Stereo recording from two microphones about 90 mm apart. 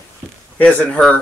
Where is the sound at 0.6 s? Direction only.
15° left (ahead or behind).